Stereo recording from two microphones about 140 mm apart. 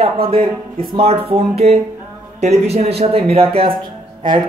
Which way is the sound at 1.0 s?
45° right (ahead or behind).